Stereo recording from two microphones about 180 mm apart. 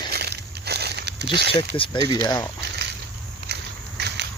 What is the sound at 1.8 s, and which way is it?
Speech, 20° left (ahead or behind).